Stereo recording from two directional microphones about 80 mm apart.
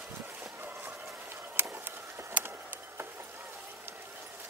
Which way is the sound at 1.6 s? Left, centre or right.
Right.